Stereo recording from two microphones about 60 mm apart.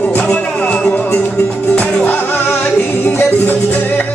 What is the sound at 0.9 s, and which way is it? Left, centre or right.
Flamenco, left.